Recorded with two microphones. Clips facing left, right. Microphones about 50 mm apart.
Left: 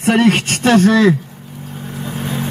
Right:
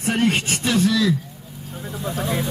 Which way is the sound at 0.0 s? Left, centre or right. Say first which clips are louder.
Left 7 dB; left.